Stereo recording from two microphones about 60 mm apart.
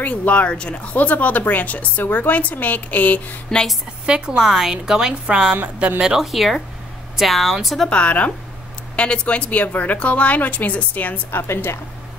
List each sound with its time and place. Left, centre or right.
0.0 s a woman's voice: left
0.9 s a woman's voice: left
3.5 s a woman's voice: centre
4.0 s a woman's voice: centre
7.9 s a woman's voice: left
11.3 s a woman's voice: left